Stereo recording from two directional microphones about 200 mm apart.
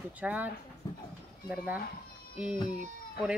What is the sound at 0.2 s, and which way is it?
Speech, 5° right (ahead or behind).